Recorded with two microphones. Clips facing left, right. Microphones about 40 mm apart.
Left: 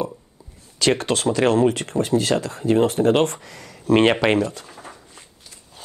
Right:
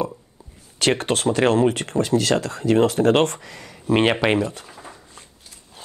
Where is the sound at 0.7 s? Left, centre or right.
Right.